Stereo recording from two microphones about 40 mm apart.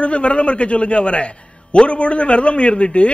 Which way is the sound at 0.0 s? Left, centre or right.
Left.